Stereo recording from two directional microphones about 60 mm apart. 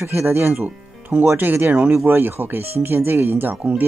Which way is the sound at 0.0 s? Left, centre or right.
Right.